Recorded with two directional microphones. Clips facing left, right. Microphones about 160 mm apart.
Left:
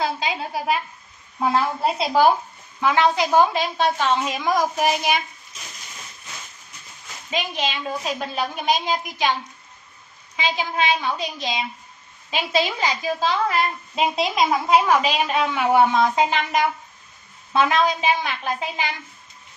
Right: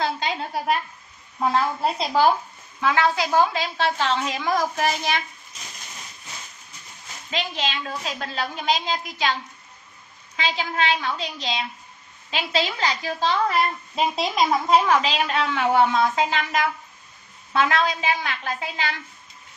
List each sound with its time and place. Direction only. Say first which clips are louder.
0.0 s a woman's voice: left 1 dB; 5° left (ahead or behind)
2.8 s a woman's voice: left 2 dB; 20° left (ahead or behind)
7.2 s a woman's voice: left 2 dB; 15° left (ahead or behind)
14.9 s a woman's voice: left 1 dB; 15° left (ahead or behind)